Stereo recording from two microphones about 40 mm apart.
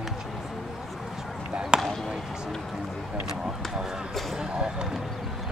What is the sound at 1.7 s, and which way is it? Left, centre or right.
Basketball bounce, right.